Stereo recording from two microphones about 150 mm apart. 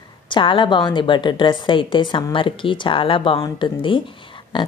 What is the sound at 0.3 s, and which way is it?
Speech, 35° left (ahead or behind).